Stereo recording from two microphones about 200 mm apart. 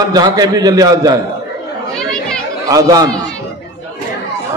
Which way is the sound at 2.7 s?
20° right (ahead or behind).